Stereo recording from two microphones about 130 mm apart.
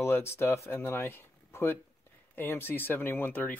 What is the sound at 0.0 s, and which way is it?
Speech, 20° left (ahead or behind).